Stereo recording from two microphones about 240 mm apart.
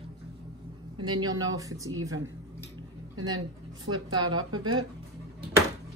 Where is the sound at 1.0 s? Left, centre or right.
Centre.